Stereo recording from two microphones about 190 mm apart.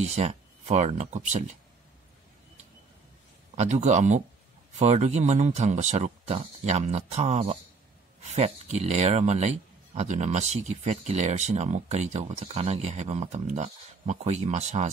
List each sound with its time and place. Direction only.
0.0 s speech: 35° right (ahead or behind)
3.5 s speech: 35° right (ahead or behind)